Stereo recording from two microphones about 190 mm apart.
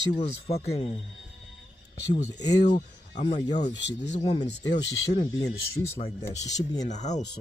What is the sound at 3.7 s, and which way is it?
Speech, 65° left (ahead or behind).